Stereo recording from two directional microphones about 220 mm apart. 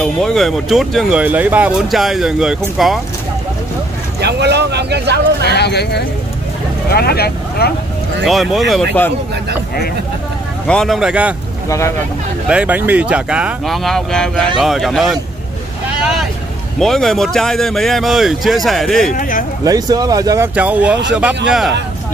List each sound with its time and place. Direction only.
0.0 s speech: centre (ahead or behind)
4.2 s vehicle: 50° right (ahead or behind)
5.5 s a sound: 50° left (ahead or behind)
6.9 s speech: 45° left (ahead or behind)
8.3 s speech: centre (ahead or behind)
10.7 s speech: centre (ahead or behind)
12.4 s speech: 5° right (ahead or behind)
16.0 s boat: centre (ahead or behind)
16.8 s speech: centre (ahead or behind)
19.1 s speech: 40° left (ahead or behind)
19.6 s speech: 15° right (ahead or behind); by 21.7 s centre (ahead or behind)